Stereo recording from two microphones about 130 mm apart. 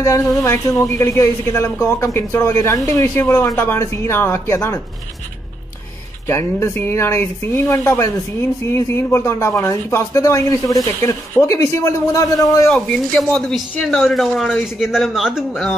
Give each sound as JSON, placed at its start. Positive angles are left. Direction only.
{"t": 0.0, "sound": "speech", "side_deg": 20}
{"t": 6.2, "sound": "speech", "side_deg": 20}
{"t": 12.7, "sound": "speech", "side_deg": 10}